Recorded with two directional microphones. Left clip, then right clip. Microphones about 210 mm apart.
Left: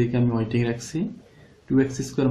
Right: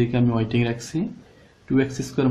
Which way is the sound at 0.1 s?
30° right (ahead or behind).